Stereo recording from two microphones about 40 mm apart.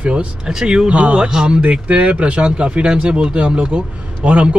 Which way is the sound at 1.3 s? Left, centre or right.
Centre.